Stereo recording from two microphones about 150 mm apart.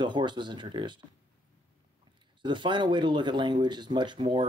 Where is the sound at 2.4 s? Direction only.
30° right (ahead or behind).